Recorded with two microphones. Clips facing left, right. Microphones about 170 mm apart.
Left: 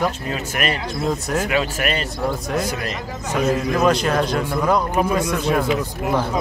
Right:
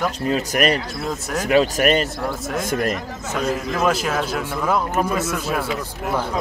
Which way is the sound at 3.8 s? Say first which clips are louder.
Left 2 dB; 5° right (ahead or behind).